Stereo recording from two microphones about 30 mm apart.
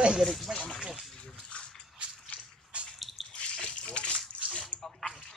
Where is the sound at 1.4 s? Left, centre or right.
Left.